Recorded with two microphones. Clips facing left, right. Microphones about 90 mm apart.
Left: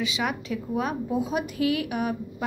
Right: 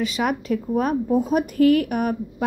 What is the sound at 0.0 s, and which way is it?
Speech, 45° right (ahead or behind).